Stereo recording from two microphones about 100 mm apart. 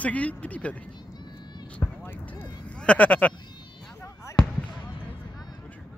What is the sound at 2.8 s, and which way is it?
Speech, 10° left (ahead or behind).